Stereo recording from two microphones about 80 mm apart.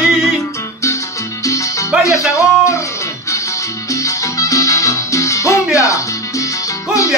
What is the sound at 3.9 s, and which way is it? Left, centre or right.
Music, left.